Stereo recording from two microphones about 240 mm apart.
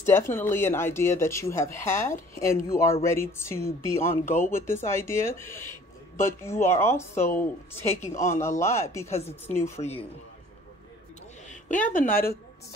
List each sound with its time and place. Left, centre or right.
0.0 s speech: centre
9.0 s speech: left
11.4 s a woman's voice: left